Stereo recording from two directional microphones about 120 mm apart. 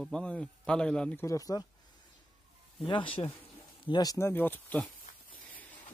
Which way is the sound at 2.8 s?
45° left (ahead or behind).